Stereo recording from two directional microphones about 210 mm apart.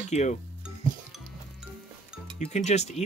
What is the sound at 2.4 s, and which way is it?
Speech, 30° left (ahead or behind).